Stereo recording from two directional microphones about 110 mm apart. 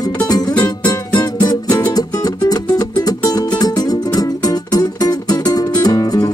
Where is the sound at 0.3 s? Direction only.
35° left (ahead or behind).